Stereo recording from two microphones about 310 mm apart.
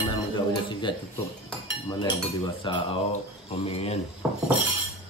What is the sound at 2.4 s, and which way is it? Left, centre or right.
Speech, centre.